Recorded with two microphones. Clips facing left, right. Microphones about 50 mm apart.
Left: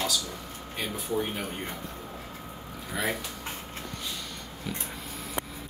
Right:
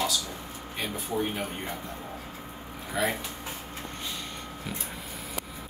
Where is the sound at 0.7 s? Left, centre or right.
Centre.